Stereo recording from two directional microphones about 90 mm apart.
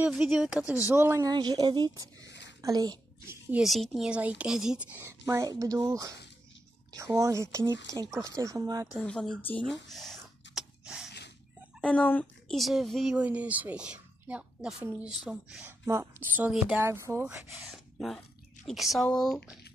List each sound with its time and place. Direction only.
0.1 s a woman's voice: 5° right (ahead or behind)
0.9 s speech: 30° right (ahead or behind)
1.2 s a woman's voice: 50° right (ahead or behind)
3.6 s speech: centre (ahead or behind)
4.1 s a woman's voice: 15° right (ahead or behind)
5.2 s speech: 40° right (ahead or behind)
8.9 s speech: 10° left (ahead or behind)
9.7 s a sound: centre (ahead or behind)
11.8 s speech: 15° left (ahead or behind)
12.5 s speech: centre (ahead or behind)
13.1 s a woman's voice: 15° right (ahead or behind)
15.6 s speech: 30° right (ahead or behind)
17.6 s speech: 5° left (ahead or behind)